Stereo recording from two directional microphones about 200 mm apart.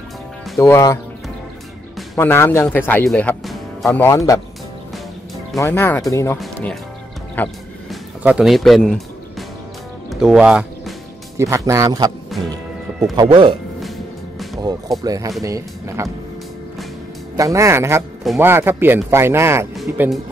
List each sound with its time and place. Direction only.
0.6 s speech: 15° left (ahead or behind)
2.1 s speech: 10° left (ahead or behind)
5.6 s speech: 10° left (ahead or behind)
6.4 s speech: centre (ahead or behind)
7.9 s speech: 5° right (ahead or behind)
10.0 s music: 5° right (ahead or behind)
13.1 s speech: 20° right (ahead or behind)
14.6 s speech: 20° right (ahead or behind)
17.4 s speech: 15° right (ahead or behind)
19.7 s speech: centre (ahead or behind)